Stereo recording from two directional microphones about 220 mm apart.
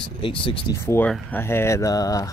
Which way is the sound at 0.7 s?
10° left (ahead or behind).